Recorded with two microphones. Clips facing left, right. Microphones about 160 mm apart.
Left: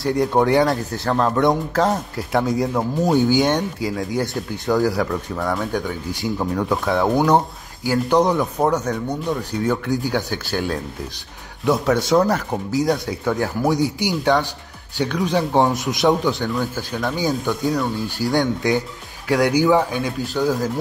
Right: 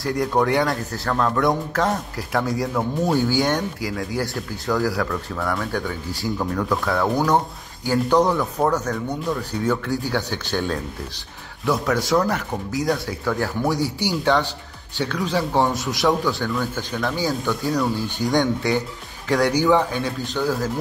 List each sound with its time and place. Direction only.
0.0 s speech: 25° left (ahead or behind)
11.6 s speech: 20° left (ahead or behind)